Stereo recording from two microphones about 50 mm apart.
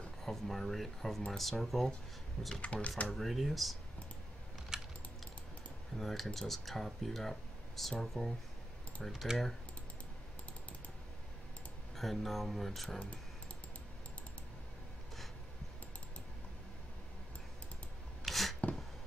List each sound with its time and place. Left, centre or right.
0.2 s speech: centre
2.6 s speech: left
3.1 s speech: centre
4.7 s typing: centre
5.9 s speech: centre
12.0 s speech: centre
18.2 s a sound: centre